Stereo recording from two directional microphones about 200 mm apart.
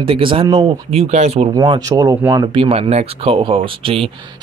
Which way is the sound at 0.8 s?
30° right (ahead or behind).